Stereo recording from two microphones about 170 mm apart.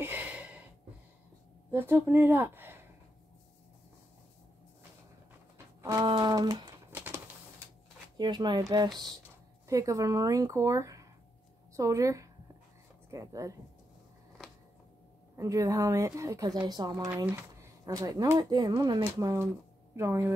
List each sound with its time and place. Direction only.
0.0 s gasp: 10° right (ahead or behind)
1.7 s speech: 15° right (ahead or behind)
5.8 s speech: 20° right (ahead or behind)
6.9 s a sound: 10° right (ahead or behind)
8.2 s a woman's voice: 25° right (ahead or behind)
15.3 s speech: 20° right (ahead or behind)